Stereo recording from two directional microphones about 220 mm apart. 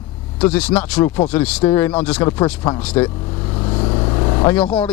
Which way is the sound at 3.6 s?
25° left (ahead or behind).